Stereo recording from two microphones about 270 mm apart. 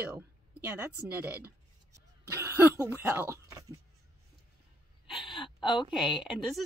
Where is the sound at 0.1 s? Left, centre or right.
Centre.